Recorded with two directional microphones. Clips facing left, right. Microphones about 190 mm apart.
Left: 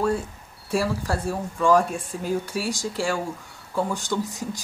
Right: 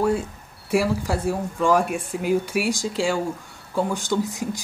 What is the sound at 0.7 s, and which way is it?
Speech, 15° right (ahead or behind).